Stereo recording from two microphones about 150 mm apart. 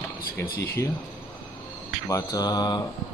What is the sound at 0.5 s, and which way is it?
Speech, 20° left (ahead or behind).